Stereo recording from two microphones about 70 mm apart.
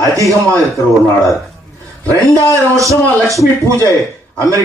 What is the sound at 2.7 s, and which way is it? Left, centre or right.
A man's voice, right.